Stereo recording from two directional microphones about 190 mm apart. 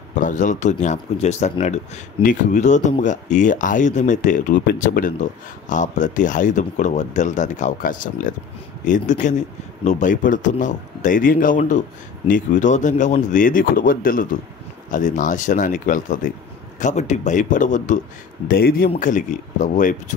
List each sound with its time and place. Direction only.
0.1 s a man's voice: 40° left (ahead or behind)
18.5 s a man's voice: 50° left (ahead or behind)